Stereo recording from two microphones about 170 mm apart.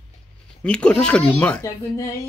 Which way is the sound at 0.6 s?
5° left (ahead or behind).